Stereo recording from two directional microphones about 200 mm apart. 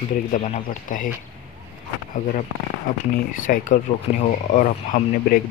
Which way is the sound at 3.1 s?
45° left (ahead or behind).